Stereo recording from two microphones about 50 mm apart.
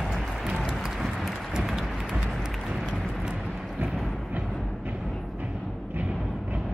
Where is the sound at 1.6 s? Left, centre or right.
Centre.